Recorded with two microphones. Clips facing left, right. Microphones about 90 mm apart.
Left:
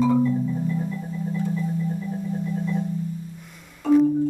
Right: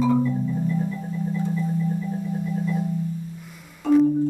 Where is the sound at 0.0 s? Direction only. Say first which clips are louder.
Left 1 dB; centre (ahead or behind).